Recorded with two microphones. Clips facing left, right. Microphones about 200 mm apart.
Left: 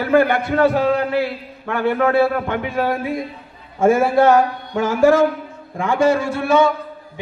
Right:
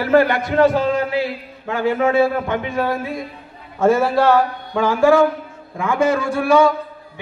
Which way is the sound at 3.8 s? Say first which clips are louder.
Left 1 dB; 50° left (ahead or behind).